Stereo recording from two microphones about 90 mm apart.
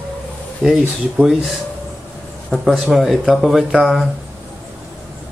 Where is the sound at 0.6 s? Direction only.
5° right (ahead or behind).